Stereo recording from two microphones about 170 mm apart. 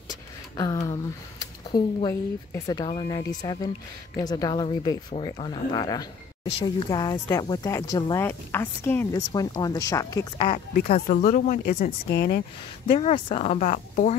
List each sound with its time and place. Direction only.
0.1 s a sound: 25° left (ahead or behind)
1.7 s speech: 25° left (ahead or behind)
10.7 s speech: 50° left (ahead or behind)
12.8 s speech: 35° left (ahead or behind)